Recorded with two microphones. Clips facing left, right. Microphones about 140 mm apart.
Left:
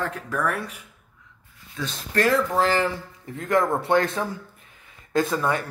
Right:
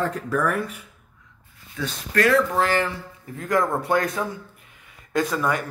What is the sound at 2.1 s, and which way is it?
Speech, 30° left (ahead or behind).